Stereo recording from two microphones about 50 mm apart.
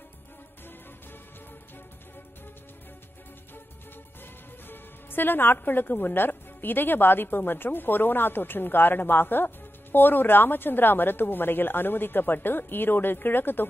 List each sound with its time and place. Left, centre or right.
4.6 s a woman's voice: left